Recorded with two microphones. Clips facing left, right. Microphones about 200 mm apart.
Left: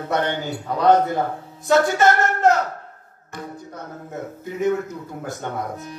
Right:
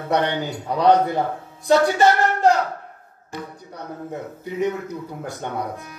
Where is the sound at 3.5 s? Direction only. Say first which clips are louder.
Left 4 dB; 45° left (ahead or behind).